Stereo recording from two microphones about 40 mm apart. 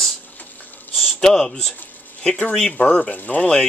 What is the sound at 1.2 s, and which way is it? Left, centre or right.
Speech, centre.